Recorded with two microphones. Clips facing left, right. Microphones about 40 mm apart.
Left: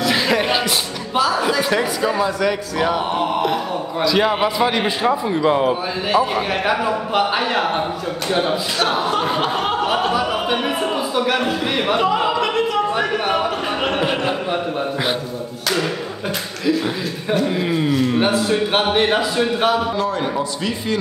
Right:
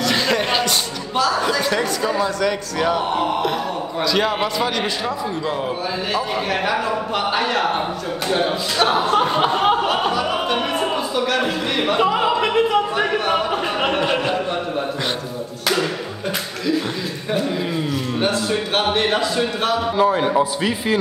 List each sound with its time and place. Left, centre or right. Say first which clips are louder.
0.0 s a sound: left 1 dB; centre
1.1 s a man's voice: left 1 dB; centre; by 5.8 s left
6.1 s a man's voice: left 5 dB; centre
8.7 s a man's voice: right 5 dB; centre
9.8 s a sound: left 1 dB; centre
11.4 s speech: left 1 dB; centre
12.0 s opera: even; centre
13.9 s a sound: even; centre
17.6 s a man's voice: left 5 dB; centre
20.0 s a man's voice: right 4 dB; centre